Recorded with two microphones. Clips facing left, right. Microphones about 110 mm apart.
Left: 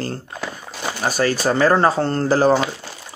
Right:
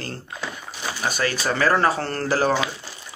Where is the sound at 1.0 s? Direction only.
35° left (ahead or behind).